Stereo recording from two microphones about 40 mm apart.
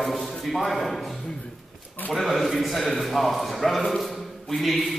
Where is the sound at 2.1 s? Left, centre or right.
Centre.